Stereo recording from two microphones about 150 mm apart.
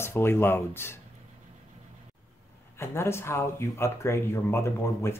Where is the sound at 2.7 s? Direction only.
15° left (ahead or behind).